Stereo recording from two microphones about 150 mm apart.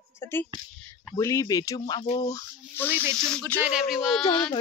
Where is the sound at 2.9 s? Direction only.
15° right (ahead or behind).